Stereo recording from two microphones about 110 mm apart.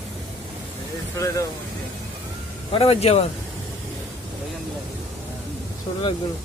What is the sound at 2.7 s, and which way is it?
Speech, 65° left (ahead or behind).